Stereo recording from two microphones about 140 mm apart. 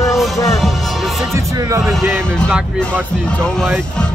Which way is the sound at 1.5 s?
20° right (ahead or behind).